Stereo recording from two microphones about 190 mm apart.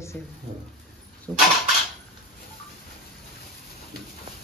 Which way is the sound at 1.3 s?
10° left (ahead or behind).